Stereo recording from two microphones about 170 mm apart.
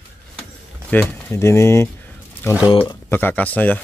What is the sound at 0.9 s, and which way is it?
Speech, 10° left (ahead or behind).